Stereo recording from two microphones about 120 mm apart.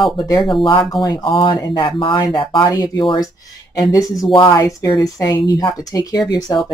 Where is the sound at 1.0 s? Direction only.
35° left (ahead or behind).